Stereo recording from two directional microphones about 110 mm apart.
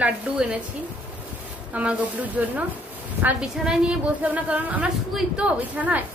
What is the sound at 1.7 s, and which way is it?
A woman's voice, 15° right (ahead or behind).